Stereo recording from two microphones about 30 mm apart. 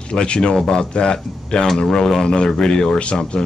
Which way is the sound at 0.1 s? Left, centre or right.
Left.